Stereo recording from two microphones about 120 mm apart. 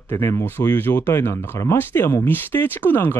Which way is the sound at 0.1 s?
20° left (ahead or behind).